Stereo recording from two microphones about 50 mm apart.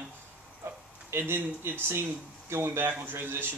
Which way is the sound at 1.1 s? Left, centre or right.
Right.